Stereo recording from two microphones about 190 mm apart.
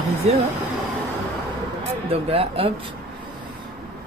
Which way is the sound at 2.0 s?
30° right (ahead or behind).